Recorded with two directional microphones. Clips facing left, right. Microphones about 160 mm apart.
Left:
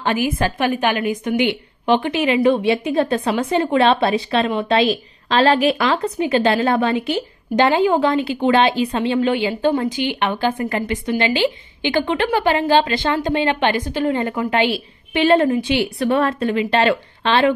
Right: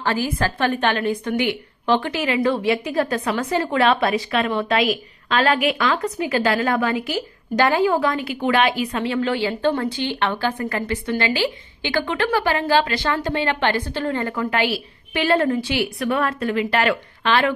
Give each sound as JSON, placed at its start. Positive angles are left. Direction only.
{"t": 0.0, "sound": "a woman's voice", "side_deg": 20}